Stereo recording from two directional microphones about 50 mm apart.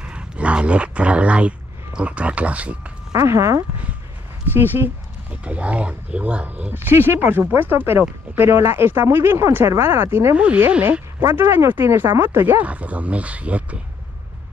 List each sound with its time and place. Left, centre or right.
0.0 s a sound: right
2.0 s speech: right
3.2 s speech: right
4.6 s speech: right
5.3 s speech: right
6.7 s speech: right
10.3 s speech: right
10.8 s speech: right
11.3 s speech: right
12.6 s speech: right